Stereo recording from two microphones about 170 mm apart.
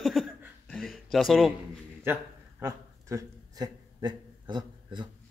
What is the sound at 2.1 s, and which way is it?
Speech, 15° right (ahead or behind).